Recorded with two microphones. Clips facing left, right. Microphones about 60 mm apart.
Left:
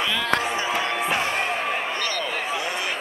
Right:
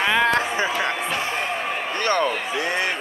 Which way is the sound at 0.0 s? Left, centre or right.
Right.